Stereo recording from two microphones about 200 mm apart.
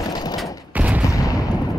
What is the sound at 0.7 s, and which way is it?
Fusillade, 5° right (ahead or behind).